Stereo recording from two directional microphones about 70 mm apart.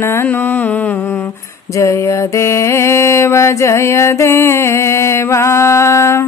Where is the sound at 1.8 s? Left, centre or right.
Left.